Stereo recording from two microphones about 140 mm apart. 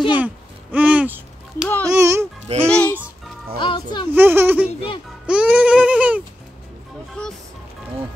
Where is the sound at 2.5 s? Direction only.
50° right (ahead or behind).